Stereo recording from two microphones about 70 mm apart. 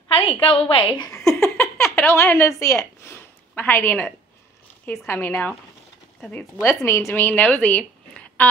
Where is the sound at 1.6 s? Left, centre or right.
Left.